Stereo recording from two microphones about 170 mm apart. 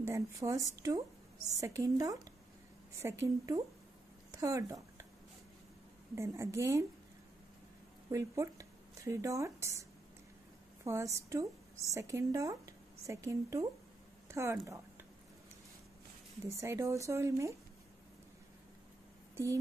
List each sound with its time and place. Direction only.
0.0 s speech: 20° right (ahead or behind)
6.1 s speech: 15° right (ahead or behind)
8.1 s speech: 15° right (ahead or behind)
16.5 s speech: 15° right (ahead or behind)
19.3 s speech: 15° right (ahead or behind)